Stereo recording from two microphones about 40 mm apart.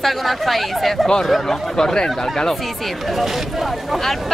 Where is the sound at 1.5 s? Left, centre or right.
Centre.